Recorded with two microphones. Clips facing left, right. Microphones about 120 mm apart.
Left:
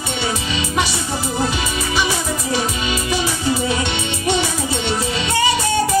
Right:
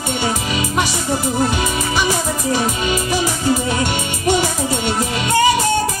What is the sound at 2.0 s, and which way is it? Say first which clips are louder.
Music: right 1 dB; 45° right (ahead or behind).